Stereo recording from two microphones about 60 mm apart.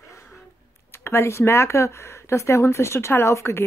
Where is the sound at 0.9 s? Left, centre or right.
Left.